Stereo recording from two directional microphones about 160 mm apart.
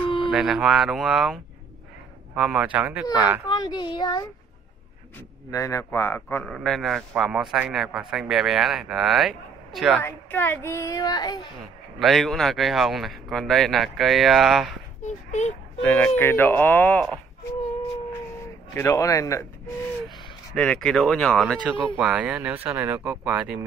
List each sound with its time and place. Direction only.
0.2 s a man's voice: centre (ahead or behind)
3.4 s speech: 25° left (ahead or behind)
5.5 s child singing: 20° left (ahead or behind)
6.4 s a man's voice: centre (ahead or behind)
10.0 s child singing: 15° left (ahead or behind)
12.0 s a man's voice: centre (ahead or behind)
15.0 s a child's voice: 45° left (ahead or behind)
15.8 s child singing: 10° left (ahead or behind)
18.8 s speech: 20° left (ahead or behind)
20.5 s a man's voice: 5° left (ahead or behind)
21.6 s speech: 10° right (ahead or behind)